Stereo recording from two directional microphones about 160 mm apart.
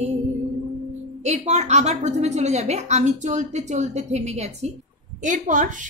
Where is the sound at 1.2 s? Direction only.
45° right (ahead or behind).